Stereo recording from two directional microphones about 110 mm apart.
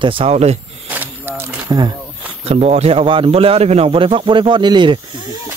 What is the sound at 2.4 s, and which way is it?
Speech, 75° right (ahead or behind).